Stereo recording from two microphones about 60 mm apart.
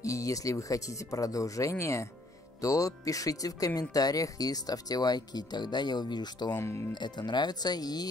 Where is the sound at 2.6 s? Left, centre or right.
Left.